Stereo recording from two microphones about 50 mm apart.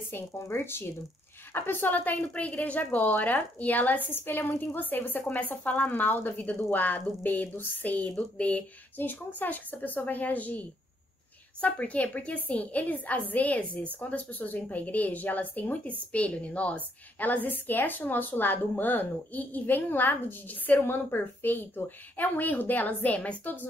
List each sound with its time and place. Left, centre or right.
0.4 s a woman's voice: left